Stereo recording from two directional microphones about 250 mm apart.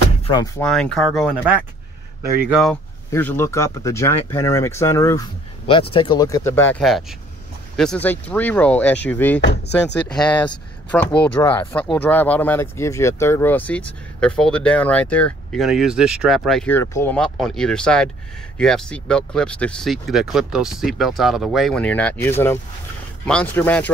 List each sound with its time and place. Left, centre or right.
0.2 s speech: centre
0.7 s speech: centre
3.1 s speech: centre
9.4 s speech: left
10.1 s speech: centre
11.4 s speech: centre
11.9 s speech: centre